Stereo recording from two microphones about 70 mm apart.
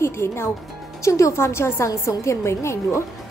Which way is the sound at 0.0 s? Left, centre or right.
Left.